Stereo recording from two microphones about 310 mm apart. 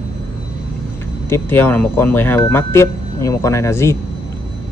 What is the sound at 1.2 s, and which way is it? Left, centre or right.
Speech, centre.